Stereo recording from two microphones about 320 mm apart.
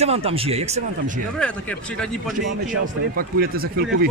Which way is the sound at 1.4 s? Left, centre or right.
Centre.